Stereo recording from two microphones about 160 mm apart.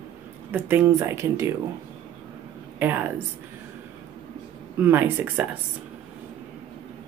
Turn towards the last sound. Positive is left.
turn(degrees=-15)  # may be behind; listen again after turning